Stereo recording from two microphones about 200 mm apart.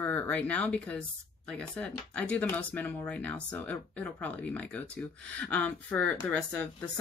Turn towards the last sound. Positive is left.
turn(degrees=5)  # may be behind; listen again after turning